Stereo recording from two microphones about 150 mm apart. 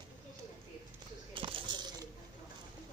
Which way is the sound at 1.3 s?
35° right (ahead or behind).